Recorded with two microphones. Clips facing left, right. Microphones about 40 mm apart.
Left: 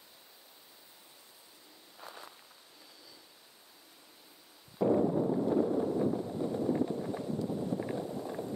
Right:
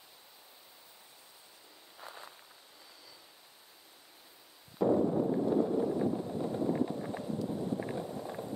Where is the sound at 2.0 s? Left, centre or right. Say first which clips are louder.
Even; centre.